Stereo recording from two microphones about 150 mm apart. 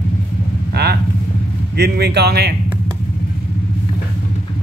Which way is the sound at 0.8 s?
90° right.